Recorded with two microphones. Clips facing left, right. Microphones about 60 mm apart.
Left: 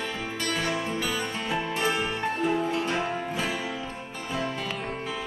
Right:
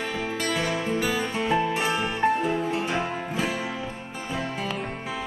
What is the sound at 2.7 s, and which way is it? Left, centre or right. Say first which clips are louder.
Music: right 1 dB; centre.